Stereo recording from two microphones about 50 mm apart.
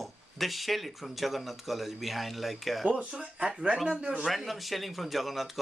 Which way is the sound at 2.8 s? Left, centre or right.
Centre.